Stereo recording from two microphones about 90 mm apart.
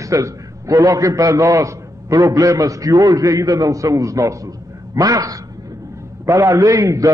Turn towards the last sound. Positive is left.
turn(degrees=-40)  # may be behind; listen again after turning